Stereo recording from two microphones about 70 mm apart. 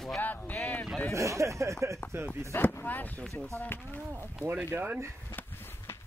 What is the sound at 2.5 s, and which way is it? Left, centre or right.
Speech, left.